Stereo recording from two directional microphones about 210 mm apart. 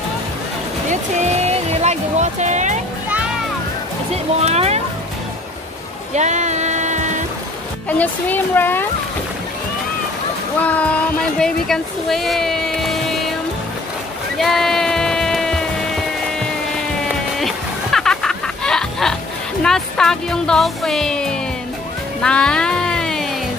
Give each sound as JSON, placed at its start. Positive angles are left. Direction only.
{"t": 1.7, "sound": "speech", "side_deg": -30}
{"t": 4.4, "sound": "speech", "side_deg": -30}
{"t": 6.1, "sound": "a sound", "side_deg": -35}
{"t": 8.0, "sound": "speech", "side_deg": 10}
{"t": 10.6, "sound": "speech", "side_deg": 5}
{"t": 14.4, "sound": "a sound", "side_deg": 0}
{"t": 17.4, "sound": "music", "side_deg": 0}
{"t": 19.6, "sound": "speech", "side_deg": 5}
{"t": 22.2, "sound": "music", "side_deg": 5}